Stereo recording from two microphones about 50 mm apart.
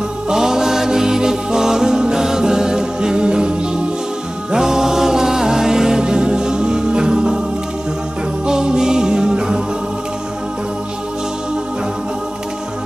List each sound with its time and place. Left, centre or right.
0.3 s music: centre
8.5 s music: centre